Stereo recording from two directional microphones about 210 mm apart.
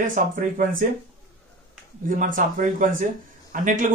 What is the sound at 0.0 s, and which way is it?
Speech, 40° right (ahead or behind).